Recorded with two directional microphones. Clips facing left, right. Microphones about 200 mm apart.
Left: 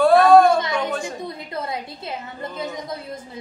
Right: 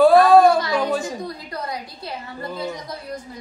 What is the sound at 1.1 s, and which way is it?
A woman's voice, 25° left (ahead or behind).